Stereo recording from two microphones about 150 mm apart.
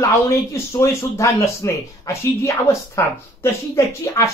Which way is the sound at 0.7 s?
20° left (ahead or behind).